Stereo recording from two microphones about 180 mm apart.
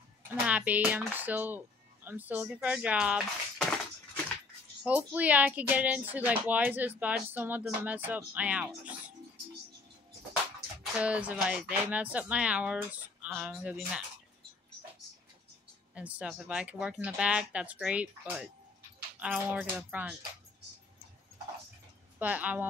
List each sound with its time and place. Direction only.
0.3 s speech: 10° right (ahead or behind)
4.8 s speech: 10° right (ahead or behind)
11.0 s speech: 5° right (ahead or behind)
15.9 s speech: 5° right (ahead or behind)
22.2 s speech: 10° right (ahead or behind)